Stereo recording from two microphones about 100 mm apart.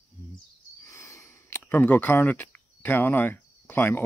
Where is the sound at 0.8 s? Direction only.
30° left (ahead or behind).